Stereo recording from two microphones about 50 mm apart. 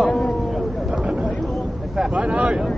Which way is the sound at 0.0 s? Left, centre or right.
Centre.